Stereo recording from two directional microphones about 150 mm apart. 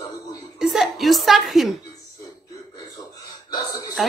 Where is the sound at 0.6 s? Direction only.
Centre (ahead or behind).